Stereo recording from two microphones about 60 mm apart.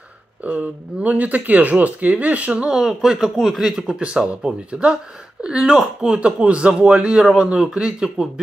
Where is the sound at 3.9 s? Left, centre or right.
Centre.